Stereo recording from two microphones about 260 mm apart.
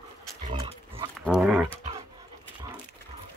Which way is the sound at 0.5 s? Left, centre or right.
Centre.